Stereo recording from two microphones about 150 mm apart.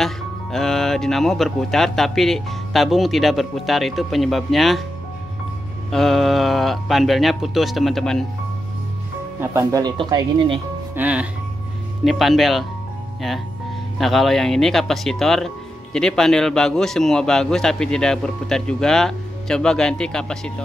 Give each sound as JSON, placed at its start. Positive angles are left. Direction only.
{"t": 0.0, "sound": "speech", "side_deg": 5}
{"t": 5.9, "sound": "speech", "side_deg": 0}
{"t": 9.4, "sound": "speech", "side_deg": -15}
{"t": 11.0, "sound": "speech", "side_deg": -10}
{"t": 13.9, "sound": "speech", "side_deg": 0}